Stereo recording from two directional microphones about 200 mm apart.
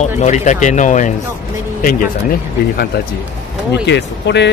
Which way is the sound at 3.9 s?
60° left (ahead or behind).